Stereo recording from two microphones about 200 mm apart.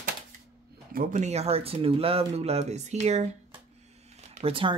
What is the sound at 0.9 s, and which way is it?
Speech, 45° right (ahead or behind).